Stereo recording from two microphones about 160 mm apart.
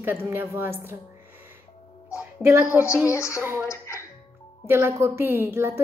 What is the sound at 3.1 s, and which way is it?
Speech, 20° left (ahead or behind).